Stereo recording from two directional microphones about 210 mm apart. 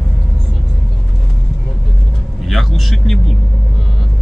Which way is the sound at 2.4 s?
Centre (ahead or behind).